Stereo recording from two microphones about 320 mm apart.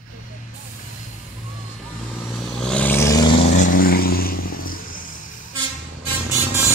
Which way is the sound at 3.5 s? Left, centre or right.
Left.